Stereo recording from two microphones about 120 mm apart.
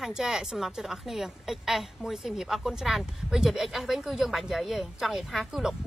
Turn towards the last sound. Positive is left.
turn(degrees=-5)  # may be behind; listen again after turning